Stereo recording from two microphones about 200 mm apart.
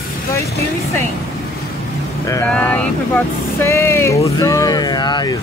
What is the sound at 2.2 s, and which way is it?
Speech, 15° left (ahead or behind).